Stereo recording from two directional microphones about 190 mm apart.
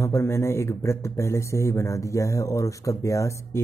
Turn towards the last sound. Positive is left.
turn(degrees=15)  # may be behind; listen again after turning